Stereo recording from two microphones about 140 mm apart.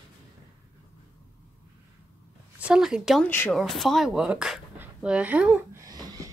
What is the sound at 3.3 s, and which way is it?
Speech, 15° left (ahead or behind).